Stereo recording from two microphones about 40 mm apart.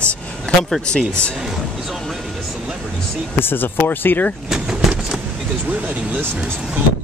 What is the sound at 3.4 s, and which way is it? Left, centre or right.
Speech, left.